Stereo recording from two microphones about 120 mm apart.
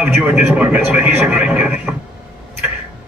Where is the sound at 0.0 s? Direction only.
20° right (ahead or behind).